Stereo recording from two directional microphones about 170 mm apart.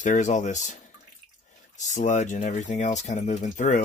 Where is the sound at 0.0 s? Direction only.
45° left (ahead or behind).